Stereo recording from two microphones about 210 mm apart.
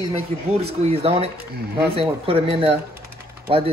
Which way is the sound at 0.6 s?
30° right (ahead or behind).